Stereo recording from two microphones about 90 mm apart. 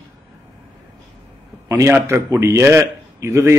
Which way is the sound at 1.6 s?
35° right (ahead or behind).